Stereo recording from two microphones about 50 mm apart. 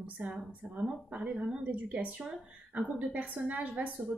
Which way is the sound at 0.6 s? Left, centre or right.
Right.